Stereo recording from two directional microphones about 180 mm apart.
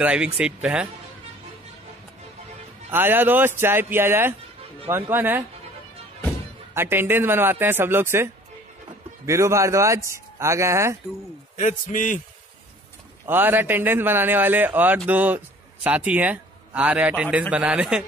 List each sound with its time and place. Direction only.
0.0 s a man's voice: 5° right (ahead or behind)
2.9 s a man's voice: 10° right (ahead or behind)
6.7 s a man's voice: 10° right (ahead or behind)
11.5 s a man's voice: 45° left (ahead or behind)
13.3 s a man's voice: 10° right (ahead or behind)